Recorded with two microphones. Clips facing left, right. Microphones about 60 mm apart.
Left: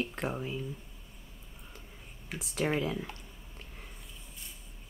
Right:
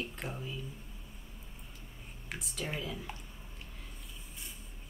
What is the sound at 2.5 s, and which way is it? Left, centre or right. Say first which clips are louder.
Speech: left 9 dB; left.